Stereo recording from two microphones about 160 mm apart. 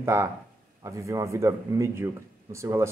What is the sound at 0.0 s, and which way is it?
Speech, 15° right (ahead or behind).